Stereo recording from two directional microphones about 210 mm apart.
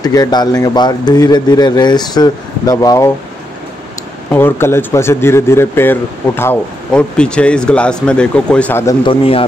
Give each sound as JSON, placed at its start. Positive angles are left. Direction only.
{"t": 0.0, "sound": "speech", "side_deg": 20}
{"t": 4.3, "sound": "speech", "side_deg": 10}
{"t": 9.0, "sound": "speech", "side_deg": 25}